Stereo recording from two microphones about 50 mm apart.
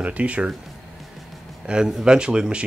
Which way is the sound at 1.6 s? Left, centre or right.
Centre.